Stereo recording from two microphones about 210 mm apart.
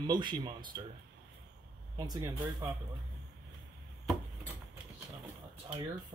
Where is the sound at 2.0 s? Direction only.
20° right (ahead or behind).